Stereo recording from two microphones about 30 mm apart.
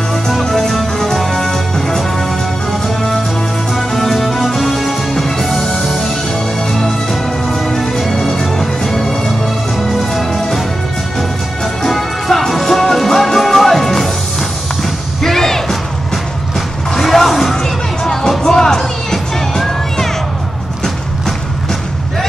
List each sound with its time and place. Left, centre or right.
0.4 s music: centre
4.1 s music: centre
9.9 s music: centre
15.2 s music: centre
16.9 s music: centre